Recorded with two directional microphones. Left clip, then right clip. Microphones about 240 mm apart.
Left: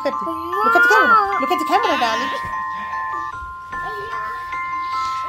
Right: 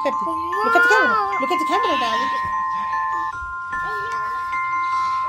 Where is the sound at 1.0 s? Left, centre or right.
Centre.